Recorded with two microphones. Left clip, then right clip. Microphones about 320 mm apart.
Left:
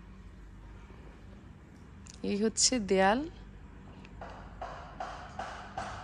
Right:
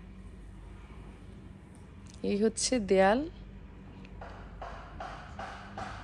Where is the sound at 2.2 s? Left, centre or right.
Centre.